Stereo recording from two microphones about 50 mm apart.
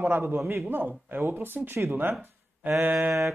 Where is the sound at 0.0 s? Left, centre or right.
Right.